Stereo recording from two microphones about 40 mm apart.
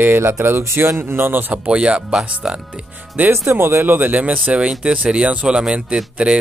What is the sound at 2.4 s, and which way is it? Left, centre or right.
Speech, right.